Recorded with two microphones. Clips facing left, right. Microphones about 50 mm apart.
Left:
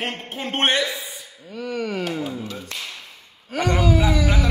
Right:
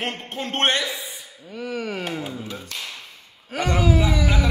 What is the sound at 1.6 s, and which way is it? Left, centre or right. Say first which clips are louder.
Speech: left 2 dB; centre.